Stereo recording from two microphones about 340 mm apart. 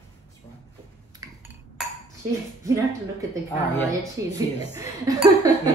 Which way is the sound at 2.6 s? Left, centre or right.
Centre.